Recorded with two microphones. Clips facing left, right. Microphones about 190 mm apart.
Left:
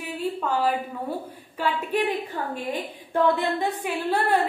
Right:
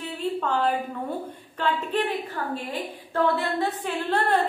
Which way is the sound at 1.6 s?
10° left (ahead or behind).